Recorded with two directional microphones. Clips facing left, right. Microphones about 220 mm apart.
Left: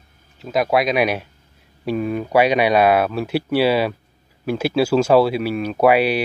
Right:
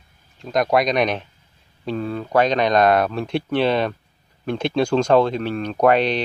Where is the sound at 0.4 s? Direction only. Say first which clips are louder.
Even; 5° left (ahead or behind).